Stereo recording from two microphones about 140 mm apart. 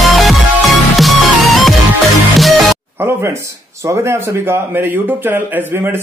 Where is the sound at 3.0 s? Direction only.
15° right (ahead or behind).